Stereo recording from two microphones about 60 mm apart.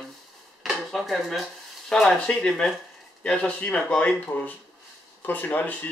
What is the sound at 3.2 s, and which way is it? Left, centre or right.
Speech, centre.